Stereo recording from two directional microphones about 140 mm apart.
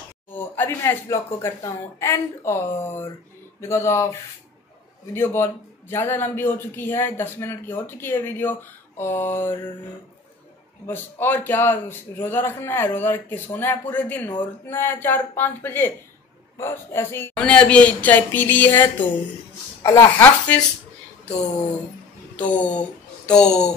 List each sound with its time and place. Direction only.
0.3 s speech: 15° left (ahead or behind)
5.1 s a man's voice: 15° left (ahead or behind)
10.9 s a man's voice: 15° left (ahead or behind)
22.4 s speech: 10° left (ahead or behind)